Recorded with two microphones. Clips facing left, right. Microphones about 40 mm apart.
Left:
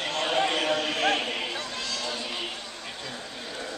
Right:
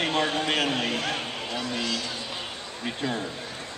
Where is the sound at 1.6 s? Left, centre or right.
Centre.